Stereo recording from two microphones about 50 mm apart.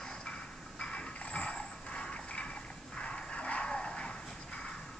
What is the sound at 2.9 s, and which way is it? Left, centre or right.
Bow-wow, centre.